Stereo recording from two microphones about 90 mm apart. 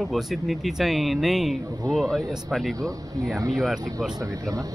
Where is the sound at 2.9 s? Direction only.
40° right (ahead or behind).